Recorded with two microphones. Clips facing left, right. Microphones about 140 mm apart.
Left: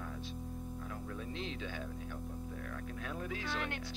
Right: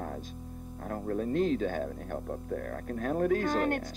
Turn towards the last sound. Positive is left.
turn(degrees=-45)  # may be behind; listen again after turning